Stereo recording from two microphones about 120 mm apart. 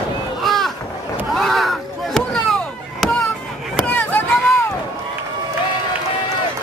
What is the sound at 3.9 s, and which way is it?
Chop, 15° left (ahead or behind).